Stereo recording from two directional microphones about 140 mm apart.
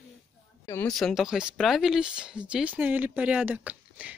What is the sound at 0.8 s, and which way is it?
Speech, centre (ahead or behind).